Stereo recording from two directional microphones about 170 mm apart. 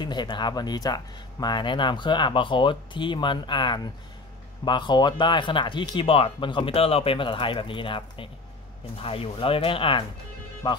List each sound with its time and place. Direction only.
0.0 s speech: 25° left (ahead or behind)